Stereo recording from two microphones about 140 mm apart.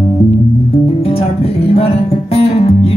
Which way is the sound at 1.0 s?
45° left (ahead or behind).